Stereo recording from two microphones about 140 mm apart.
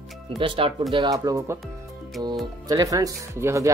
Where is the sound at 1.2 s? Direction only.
20° right (ahead or behind).